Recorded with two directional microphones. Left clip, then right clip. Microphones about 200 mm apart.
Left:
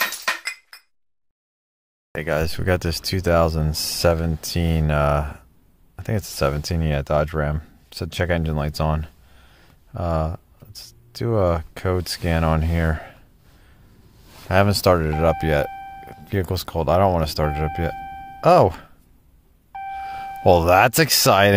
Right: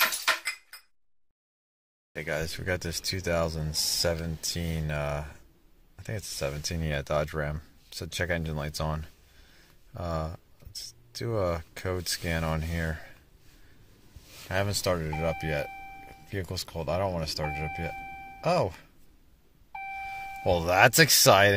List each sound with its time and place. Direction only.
2.1 s speech: 20° left (ahead or behind)
14.5 s speech: 30° left (ahead or behind)
20.4 s speech: 30° left (ahead or behind)